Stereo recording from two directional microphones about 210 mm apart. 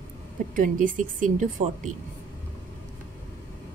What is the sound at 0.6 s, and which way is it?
Speech, 40° right (ahead or behind).